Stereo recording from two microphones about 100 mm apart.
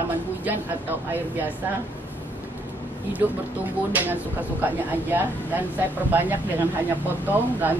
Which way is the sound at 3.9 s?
15° right (ahead or behind).